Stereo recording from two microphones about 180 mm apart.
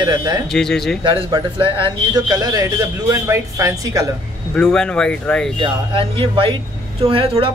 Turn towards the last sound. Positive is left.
turn(degrees=-30)  # may be behind; listen again after turning